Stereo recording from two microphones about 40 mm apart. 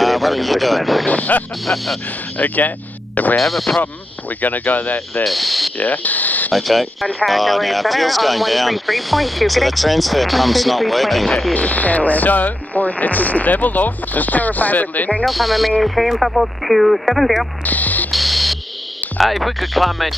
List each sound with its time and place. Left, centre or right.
0.0 s speech: centre
1.0 s speech: left
1.7 s speech: left
2.3 s speech: left
3.3 s speech: centre
4.4 s speech: left
5.2 s speech: centre
5.8 s speech: left
6.5 s speech: centre
11.5 s speech: left
15.2 s speech: centre
17.6 s speech: left
18.1 s music: centre
19.1 s speech: centre